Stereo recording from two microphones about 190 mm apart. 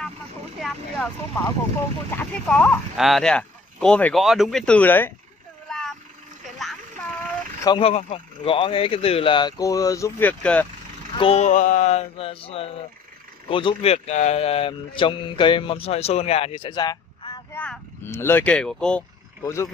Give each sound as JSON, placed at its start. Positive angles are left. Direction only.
{"t": 0.6, "sound": "speech", "side_deg": 5}
{"t": 5.7, "sound": "boat", "side_deg": 5}
{"t": 7.6, "sound": "speech", "side_deg": 30}
{"t": 11.1, "sound": "a man's voice", "side_deg": 30}
{"t": 17.6, "sound": "speech", "side_deg": 10}
{"t": 19.4, "sound": "speech", "side_deg": 15}